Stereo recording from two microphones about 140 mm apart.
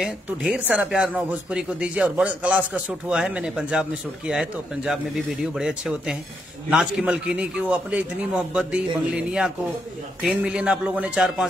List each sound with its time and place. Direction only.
0.0 s speech: 5° right (ahead or behind)